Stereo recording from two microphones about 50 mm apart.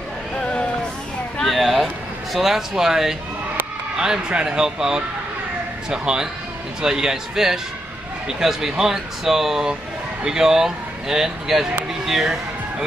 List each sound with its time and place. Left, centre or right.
0.4 s music: centre
1.4 s a sound: centre
2.3 s speech: centre